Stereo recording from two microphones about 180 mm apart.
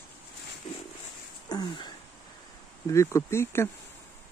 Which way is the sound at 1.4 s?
25° left (ahead or behind).